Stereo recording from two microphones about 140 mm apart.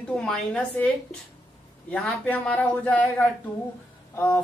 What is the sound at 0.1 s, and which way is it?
A woman's voice, 5° left (ahead or behind).